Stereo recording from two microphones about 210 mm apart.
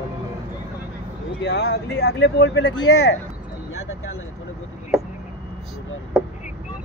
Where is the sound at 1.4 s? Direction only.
55° left (ahead or behind).